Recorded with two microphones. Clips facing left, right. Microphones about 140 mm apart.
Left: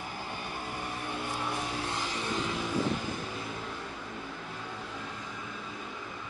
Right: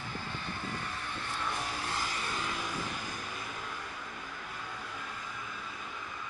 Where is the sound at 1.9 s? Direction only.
5° right (ahead or behind).